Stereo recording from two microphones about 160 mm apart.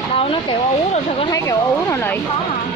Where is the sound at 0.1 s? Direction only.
35° left (ahead or behind).